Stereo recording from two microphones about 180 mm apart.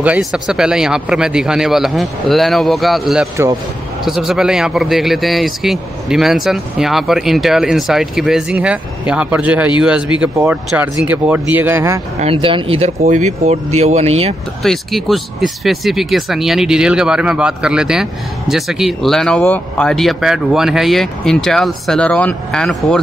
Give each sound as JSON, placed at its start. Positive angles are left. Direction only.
{"t": 0.0, "sound": "a man's voice", "side_deg": -5}
{"t": 12.2, "sound": "speech", "side_deg": -30}
{"t": 14.6, "sound": "a man's voice", "side_deg": 0}